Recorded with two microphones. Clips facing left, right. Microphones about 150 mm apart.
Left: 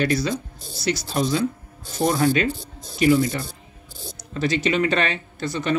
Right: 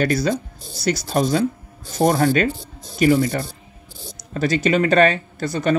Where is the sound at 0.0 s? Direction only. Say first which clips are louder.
Right 3 dB; 45° right (ahead or behind).